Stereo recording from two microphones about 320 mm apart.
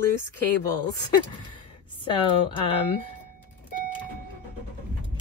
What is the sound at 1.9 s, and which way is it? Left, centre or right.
Speech, centre.